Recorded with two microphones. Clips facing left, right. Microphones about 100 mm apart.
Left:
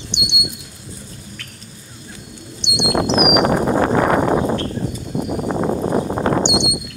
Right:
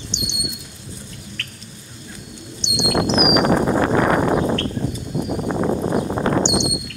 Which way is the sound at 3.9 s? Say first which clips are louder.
Left 1 dB; 30° left (ahead or behind).